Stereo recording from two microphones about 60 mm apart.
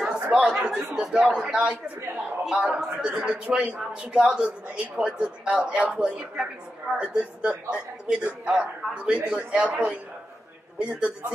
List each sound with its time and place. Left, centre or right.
0.0 s chatter: centre
1.1 s a man's voice: centre